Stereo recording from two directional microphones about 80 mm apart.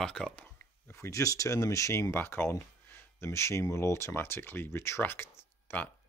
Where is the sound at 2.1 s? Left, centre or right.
Left.